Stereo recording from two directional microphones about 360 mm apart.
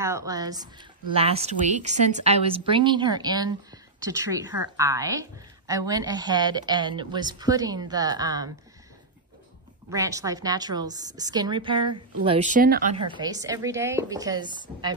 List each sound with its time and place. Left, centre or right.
0.0 s speech: centre
9.8 s speech: centre
13.1 s speech: centre